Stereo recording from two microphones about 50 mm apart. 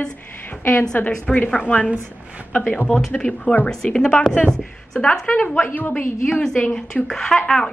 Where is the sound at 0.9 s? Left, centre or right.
Left.